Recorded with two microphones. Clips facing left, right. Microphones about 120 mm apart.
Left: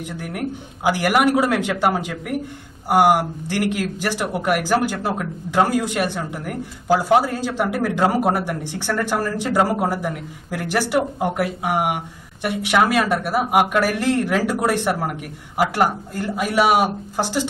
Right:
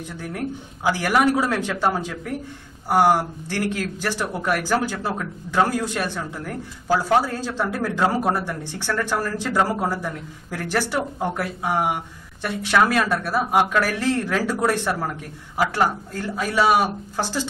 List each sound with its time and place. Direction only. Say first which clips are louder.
0.2 s speech: even; 15° left (ahead or behind)